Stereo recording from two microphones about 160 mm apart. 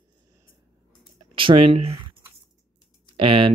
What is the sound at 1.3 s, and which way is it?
Speech, 35° right (ahead or behind).